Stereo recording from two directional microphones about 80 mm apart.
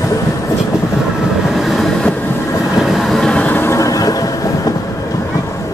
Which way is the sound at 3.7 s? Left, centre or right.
Left.